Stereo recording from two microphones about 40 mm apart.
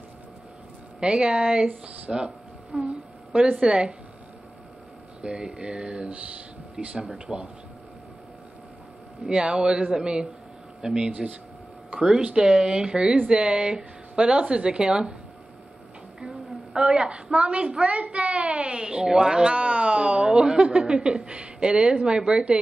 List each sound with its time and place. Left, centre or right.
0.9 s a woman's voice: right
5.2 s speech: right
7.3 s speech: right
9.2 s speech: right
11.1 s speech: right
11.9 s speech: right
16.7 s speech: right
19.5 s speech: right